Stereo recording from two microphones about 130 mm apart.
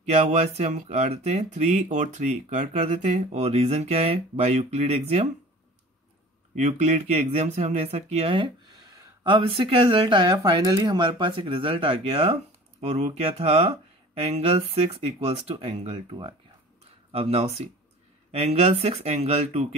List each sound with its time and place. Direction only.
0.0 s speech: 60° right (ahead or behind)
6.5 s speech: 60° right (ahead or behind)